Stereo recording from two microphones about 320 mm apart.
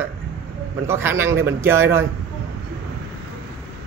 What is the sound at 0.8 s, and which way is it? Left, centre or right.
Speech, centre.